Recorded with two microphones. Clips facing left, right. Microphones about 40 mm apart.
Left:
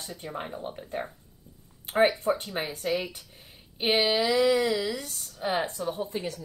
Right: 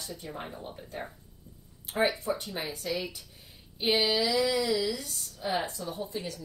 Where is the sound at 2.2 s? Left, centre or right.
Left.